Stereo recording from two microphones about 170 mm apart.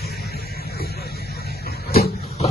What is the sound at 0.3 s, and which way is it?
Vehicle, 65° left (ahead or behind).